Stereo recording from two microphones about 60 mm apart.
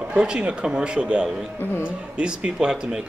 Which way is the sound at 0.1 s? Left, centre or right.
Centre.